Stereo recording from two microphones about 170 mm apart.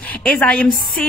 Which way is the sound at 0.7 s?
55° left (ahead or behind).